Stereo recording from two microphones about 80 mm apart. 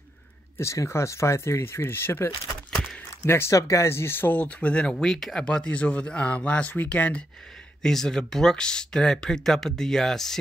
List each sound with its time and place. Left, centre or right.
0.6 s speech: left
2.7 s a sound: centre
3.3 s speech: left; by 7.2 s centre
7.8 s speech: centre